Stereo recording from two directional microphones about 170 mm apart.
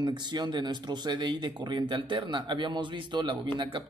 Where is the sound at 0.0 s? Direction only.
25° right (ahead or behind).